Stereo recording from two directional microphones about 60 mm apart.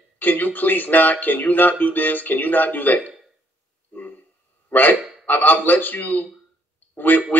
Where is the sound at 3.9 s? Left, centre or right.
Left.